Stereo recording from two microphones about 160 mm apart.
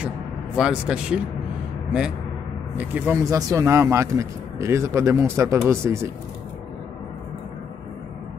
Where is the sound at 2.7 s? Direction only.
10° right (ahead or behind).